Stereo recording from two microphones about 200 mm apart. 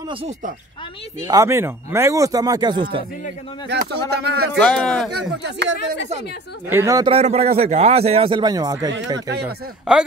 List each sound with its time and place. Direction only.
1.2 s speech: 15° right (ahead or behind)
3.6 s speech: 60° right (ahead or behind)
4.6 s speech: 5° left (ahead or behind)
5.1 s speech: 55° right (ahead or behind)
6.7 s speech: 15° right (ahead or behind)
7.1 s speech: 30° right (ahead or behind)
9.9 s speech: 5° right (ahead or behind)